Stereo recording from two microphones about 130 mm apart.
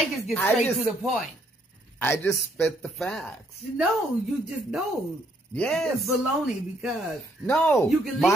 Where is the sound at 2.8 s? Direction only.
5° left (ahead or behind).